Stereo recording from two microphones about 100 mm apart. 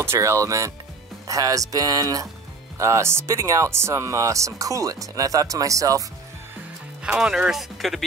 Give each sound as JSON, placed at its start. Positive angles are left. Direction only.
{"t": 0.0, "sound": "speech", "side_deg": -25}
{"t": 7.0, "sound": "speech", "side_deg": -10}